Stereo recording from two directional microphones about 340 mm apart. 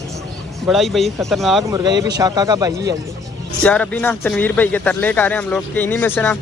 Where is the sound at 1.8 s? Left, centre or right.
Centre.